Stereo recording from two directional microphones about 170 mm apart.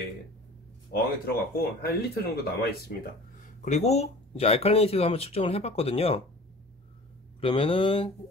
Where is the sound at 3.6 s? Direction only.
40° left (ahead or behind).